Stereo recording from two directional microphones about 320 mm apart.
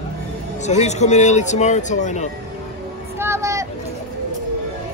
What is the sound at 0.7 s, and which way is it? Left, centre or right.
Speech, left.